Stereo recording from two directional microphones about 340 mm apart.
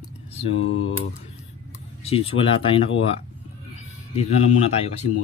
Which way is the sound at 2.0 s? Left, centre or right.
Centre.